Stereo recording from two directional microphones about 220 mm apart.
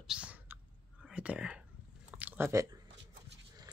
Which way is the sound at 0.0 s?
5° right (ahead or behind).